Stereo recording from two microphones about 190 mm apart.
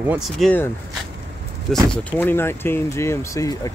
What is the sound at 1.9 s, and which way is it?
Speech, 10° left (ahead or behind).